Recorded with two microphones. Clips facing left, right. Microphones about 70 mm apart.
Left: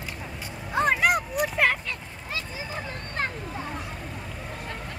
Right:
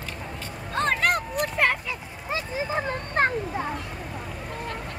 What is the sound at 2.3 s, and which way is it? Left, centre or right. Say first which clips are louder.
Vehicle: right 7 dB; right.